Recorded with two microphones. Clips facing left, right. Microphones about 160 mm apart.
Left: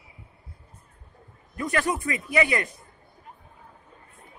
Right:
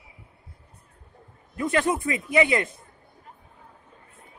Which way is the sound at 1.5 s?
25° right (ahead or behind).